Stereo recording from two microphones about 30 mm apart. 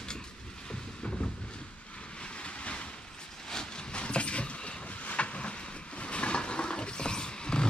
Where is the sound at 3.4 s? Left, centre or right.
Left.